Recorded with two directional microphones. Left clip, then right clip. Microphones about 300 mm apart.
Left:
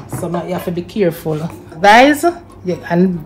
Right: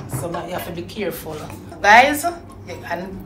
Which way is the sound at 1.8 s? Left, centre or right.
Left.